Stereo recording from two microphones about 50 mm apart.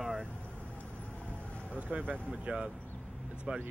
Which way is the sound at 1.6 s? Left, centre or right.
Right.